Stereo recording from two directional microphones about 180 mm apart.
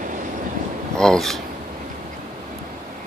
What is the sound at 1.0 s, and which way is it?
Speech, 5° left (ahead or behind).